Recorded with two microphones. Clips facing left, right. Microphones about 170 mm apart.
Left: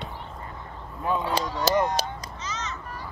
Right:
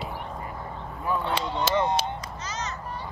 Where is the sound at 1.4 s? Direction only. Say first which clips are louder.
Left 3 dB; 40° left (ahead or behind).